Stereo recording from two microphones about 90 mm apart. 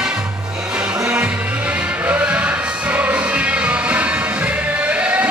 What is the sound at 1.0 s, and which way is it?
Music, 15° right (ahead or behind).